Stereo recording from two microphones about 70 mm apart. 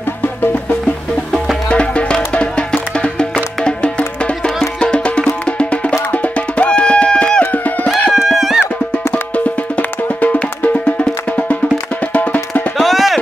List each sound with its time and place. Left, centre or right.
1.7 s music: centre
8.1 s music: centre
9.1 s music: left
12.7 s music: centre